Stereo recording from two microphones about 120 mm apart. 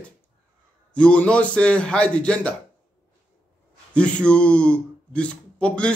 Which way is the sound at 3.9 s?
10° left (ahead or behind).